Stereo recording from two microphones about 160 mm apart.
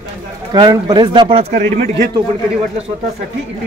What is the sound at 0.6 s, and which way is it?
Speech, 25° right (ahead or behind).